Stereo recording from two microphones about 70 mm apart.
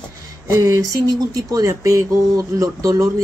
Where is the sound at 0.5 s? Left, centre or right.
Right.